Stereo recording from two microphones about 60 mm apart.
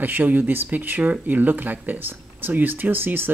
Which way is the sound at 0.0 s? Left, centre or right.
Right.